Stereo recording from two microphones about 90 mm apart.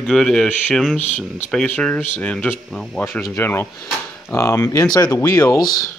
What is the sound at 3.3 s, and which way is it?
Speech, 25° left (ahead or behind).